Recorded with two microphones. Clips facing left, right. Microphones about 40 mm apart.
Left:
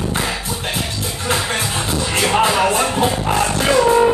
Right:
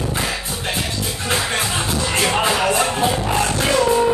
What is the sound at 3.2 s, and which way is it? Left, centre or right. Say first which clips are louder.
Music: left 2 dB; centre.